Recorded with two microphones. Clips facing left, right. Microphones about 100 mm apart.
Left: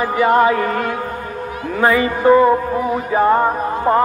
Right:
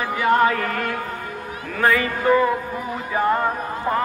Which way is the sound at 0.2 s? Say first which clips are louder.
Left 4 dB; 20° left (ahead or behind).